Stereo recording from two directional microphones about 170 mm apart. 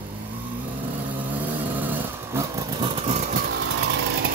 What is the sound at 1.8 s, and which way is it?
Vehicle, 15° right (ahead or behind).